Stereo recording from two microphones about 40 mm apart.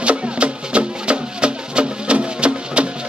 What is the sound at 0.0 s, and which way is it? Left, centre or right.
Music, right.